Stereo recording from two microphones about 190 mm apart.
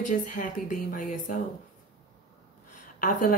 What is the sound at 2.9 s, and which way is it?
Speech, 45° left (ahead or behind).